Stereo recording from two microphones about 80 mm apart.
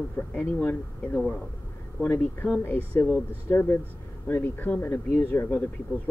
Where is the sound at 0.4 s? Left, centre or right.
Left.